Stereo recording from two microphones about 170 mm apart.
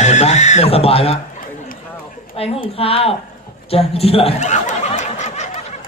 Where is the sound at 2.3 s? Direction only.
35° left (ahead or behind).